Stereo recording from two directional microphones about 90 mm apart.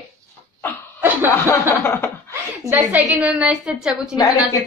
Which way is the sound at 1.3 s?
30° left (ahead or behind).